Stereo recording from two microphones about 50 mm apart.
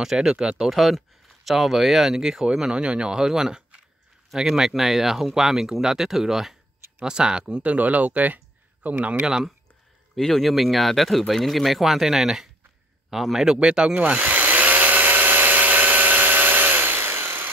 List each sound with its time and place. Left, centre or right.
0.0 s speech: centre
7.7 s speech: right
9.2 s speech: centre
10.1 s speech: centre
14.0 s drill: right